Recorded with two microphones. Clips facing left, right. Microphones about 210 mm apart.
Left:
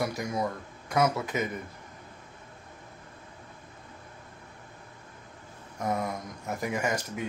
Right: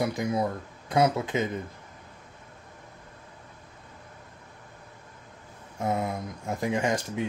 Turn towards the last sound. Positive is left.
turn(degrees=-30)  # may be behind; listen again after turning